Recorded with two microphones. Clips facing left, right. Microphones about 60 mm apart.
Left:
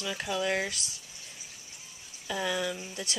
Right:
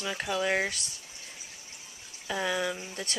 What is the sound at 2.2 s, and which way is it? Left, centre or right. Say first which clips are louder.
Speech: right 1 dB; right.